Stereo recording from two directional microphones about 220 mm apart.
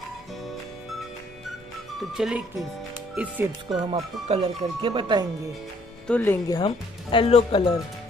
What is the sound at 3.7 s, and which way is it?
Speech, 20° right (ahead or behind).